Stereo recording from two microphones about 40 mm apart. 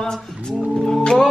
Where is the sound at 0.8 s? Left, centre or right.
Centre.